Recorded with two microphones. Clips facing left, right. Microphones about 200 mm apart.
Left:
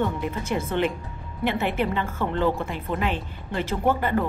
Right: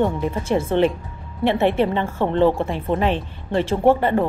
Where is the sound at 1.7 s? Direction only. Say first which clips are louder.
Right 6 dB; 30° right (ahead or behind).